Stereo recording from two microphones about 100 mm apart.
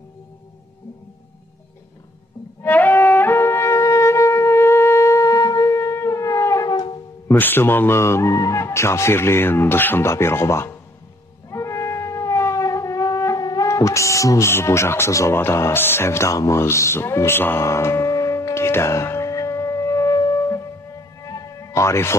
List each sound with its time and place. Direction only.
2.6 s music: 20° left (ahead or behind); by 7.0 s 45° left (ahead or behind)
7.2 s a man's voice: 20° left (ahead or behind)
11.5 s shofar: 30° left (ahead or behind)